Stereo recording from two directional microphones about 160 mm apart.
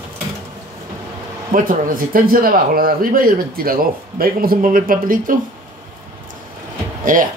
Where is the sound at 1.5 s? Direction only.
60° right (ahead or behind).